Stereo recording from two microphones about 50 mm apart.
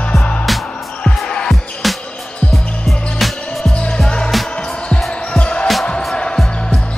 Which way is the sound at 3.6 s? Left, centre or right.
Left.